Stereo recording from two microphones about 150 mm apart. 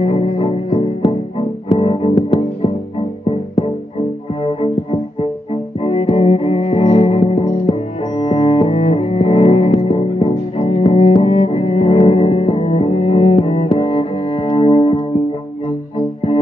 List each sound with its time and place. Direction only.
0.0 s music: 40° left (ahead or behind)
5.2 s cello: 40° left (ahead or behind)